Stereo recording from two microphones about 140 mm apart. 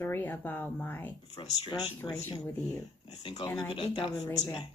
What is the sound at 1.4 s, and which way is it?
Speech, 35° left (ahead or behind).